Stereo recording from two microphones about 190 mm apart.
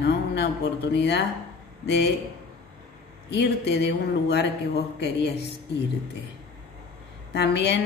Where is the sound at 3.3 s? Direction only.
60° left (ahead or behind).